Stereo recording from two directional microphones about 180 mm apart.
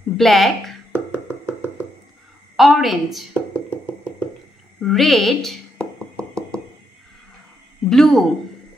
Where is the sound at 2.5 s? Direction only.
Centre (ahead or behind).